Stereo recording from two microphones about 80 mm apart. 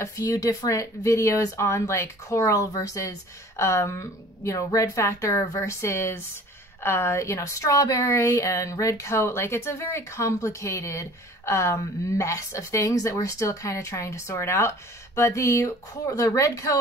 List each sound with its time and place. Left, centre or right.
0.0 s speech: left
7.3 s a woman's voice: left